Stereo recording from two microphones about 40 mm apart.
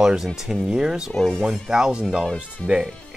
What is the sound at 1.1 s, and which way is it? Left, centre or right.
Speech, centre.